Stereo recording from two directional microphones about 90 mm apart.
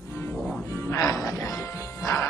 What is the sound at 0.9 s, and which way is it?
Music, 35° left (ahead or behind).